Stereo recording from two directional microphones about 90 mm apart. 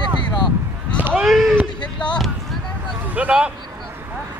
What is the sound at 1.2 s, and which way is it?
Speech, centre (ahead or behind).